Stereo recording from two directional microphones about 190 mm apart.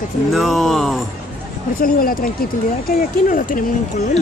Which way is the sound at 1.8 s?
50° left (ahead or behind).